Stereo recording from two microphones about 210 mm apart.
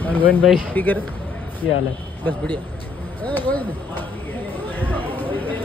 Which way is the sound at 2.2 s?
10° left (ahead or behind).